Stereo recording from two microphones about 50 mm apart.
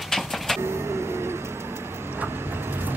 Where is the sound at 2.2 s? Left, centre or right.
Right.